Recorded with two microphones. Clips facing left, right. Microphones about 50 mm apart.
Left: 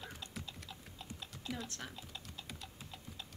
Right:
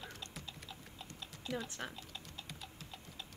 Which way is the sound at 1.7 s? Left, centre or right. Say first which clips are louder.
Right 3 dB; centre.